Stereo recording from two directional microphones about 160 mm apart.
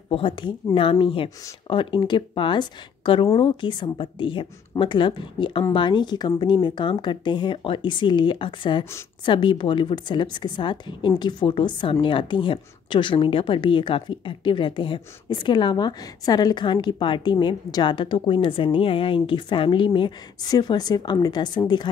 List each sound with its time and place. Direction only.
0.1 s a woman's voice: 30° left (ahead or behind)